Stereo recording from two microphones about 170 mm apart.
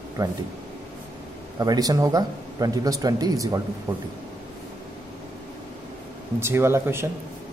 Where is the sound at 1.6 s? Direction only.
20° right (ahead or behind).